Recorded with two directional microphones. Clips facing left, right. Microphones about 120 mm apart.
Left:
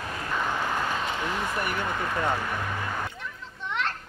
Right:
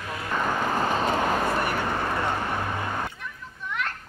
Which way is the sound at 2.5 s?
40° right (ahead or behind).